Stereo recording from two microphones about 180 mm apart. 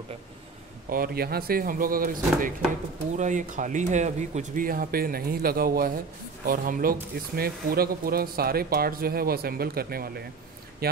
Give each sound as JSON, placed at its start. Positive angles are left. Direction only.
{"t": 0.8, "sound": "speech", "side_deg": -55}